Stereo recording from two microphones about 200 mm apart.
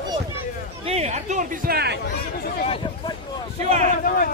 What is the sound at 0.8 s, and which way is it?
Speech, 30° right (ahead or behind).